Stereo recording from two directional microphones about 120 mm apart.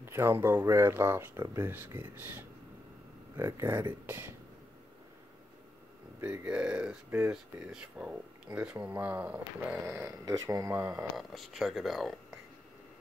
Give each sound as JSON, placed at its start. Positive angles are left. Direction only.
{"t": 0.0, "sound": "speech", "side_deg": -20}
{"t": 6.2, "sound": "speech", "side_deg": -10}
{"t": 10.2, "sound": "speech", "side_deg": -30}
{"t": 11.1, "sound": "speech", "side_deg": 0}